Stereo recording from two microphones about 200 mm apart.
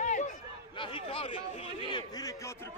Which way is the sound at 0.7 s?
25° left (ahead or behind).